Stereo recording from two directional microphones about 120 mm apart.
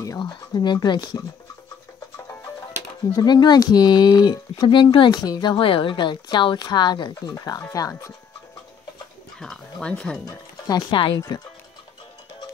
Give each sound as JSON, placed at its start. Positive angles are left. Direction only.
{"t": 0.2, "sound": "speech", "side_deg": 40}
{"t": 3.1, "sound": "speech", "side_deg": 35}
{"t": 9.4, "sound": "speech", "side_deg": 5}
{"t": 10.2, "sound": "speech", "side_deg": 35}
{"t": 11.1, "sound": "speech", "side_deg": 30}